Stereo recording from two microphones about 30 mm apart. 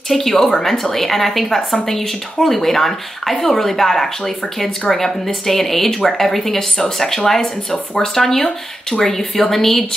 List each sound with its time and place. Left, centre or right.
0.1 s a woman's voice: centre